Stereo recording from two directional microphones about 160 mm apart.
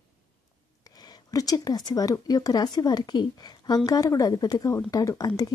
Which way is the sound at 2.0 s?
25° left (ahead or behind).